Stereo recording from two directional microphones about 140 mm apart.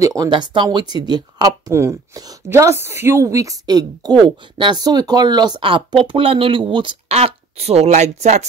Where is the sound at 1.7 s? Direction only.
20° right (ahead or behind).